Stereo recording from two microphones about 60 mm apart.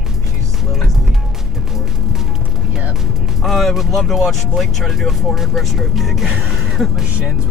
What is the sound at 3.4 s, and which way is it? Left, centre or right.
Speech, centre.